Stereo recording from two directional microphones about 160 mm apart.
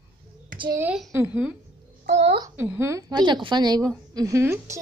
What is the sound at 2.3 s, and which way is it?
A woman's voice, 20° right (ahead or behind).